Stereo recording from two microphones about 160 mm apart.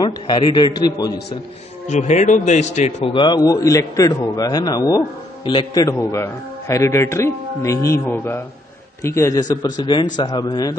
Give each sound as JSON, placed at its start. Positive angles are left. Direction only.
{"t": 0.0, "sound": "a man's voice", "side_deg": 25}
{"t": 1.9, "sound": "a man's voice", "side_deg": 50}
{"t": 3.1, "sound": "a man's voice", "side_deg": 30}